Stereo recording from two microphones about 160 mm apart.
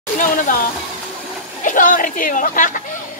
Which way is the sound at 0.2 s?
55° left (ahead or behind).